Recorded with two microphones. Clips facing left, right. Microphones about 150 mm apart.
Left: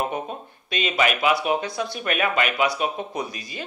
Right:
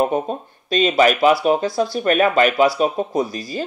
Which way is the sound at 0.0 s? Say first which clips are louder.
Right 8 dB; 40° right (ahead or behind).